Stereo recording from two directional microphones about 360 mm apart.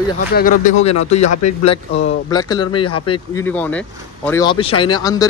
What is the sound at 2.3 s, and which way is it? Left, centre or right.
Speech, centre.